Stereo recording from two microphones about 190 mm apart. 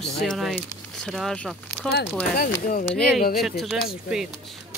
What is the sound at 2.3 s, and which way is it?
Speech, 50° left (ahead or behind).